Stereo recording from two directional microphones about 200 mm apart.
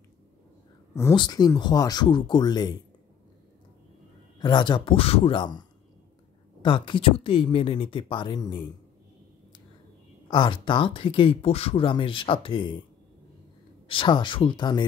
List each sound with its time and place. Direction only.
0.9 s speech: 20° left (ahead or behind)
4.4 s speech: 20° left (ahead or behind)
6.6 s speech: 25° left (ahead or behind)
10.2 s speech: 25° left (ahead or behind)
13.8 s speech: 25° left (ahead or behind)